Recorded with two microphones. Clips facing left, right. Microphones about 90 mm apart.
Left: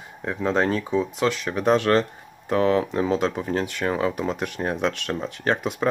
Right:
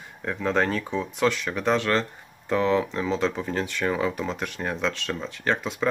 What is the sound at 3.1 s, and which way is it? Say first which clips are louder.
Speech: right 1 dB; 10° left (ahead or behind).